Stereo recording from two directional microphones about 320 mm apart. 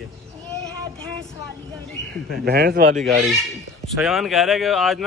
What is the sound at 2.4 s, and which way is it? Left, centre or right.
Speech, right.